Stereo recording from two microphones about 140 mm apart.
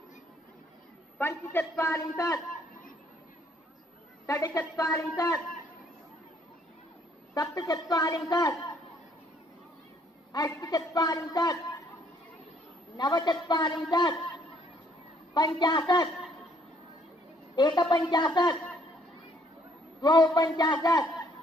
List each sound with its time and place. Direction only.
1.1 s a man's voice: 15° left (ahead or behind)
4.3 s a man's voice: 25° left (ahead or behind)
7.3 s a man's voice: 25° left (ahead or behind)
10.3 s a man's voice: 25° left (ahead or behind)
12.9 s a woman's voice: 30° left (ahead or behind)
17.6 s a woman's voice: 30° left (ahead or behind)
20.0 s a man's voice: 30° left (ahead or behind)